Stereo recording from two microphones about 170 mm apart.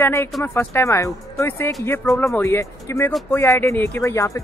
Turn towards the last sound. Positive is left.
turn(degrees=15)  # may be behind; listen again after turning